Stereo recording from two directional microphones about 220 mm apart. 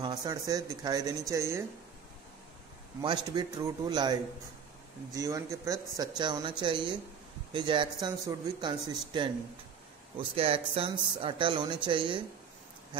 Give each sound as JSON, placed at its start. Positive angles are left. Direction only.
{"t": 0.0, "sound": "speech", "side_deg": -15}
{"t": 3.0, "sound": "speech", "side_deg": -20}